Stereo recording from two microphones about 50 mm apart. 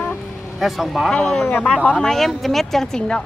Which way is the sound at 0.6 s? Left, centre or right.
Centre.